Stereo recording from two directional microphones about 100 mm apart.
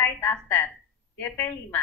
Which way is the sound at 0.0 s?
25° left (ahead or behind).